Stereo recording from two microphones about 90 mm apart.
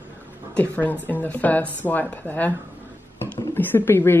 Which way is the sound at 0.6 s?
20° left (ahead or behind).